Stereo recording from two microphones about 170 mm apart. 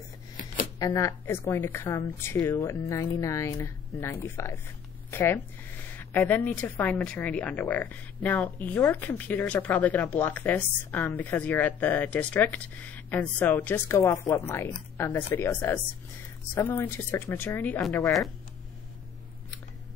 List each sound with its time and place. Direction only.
0.7 s speech: 20° left (ahead or behind)